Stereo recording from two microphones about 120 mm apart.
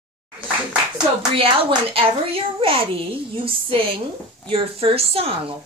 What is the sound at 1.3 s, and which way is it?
A child's voice, 50° right (ahead or behind).